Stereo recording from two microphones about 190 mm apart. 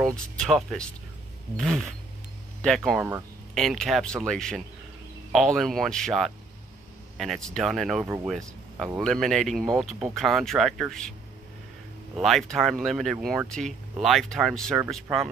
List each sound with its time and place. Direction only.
0.4 s speech: centre (ahead or behind)
12.2 s speech: centre (ahead or behind)